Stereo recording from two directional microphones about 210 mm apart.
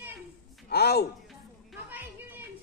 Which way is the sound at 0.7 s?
50° left (ahead or behind).